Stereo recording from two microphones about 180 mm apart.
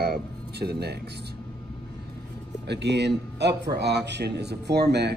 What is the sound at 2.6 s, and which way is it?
Speech, 70° right (ahead or behind).